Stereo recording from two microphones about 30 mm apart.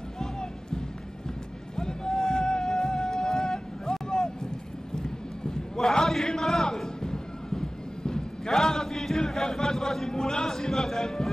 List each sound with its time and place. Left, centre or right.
0.2 s music: left
1.8 s a sound: left
10.6 s a man's voice: centre